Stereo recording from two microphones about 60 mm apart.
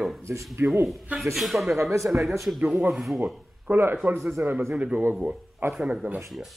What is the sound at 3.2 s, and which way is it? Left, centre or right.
Speech, right.